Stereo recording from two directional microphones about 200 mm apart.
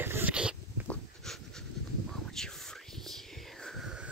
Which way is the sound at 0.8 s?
Centre (ahead or behind).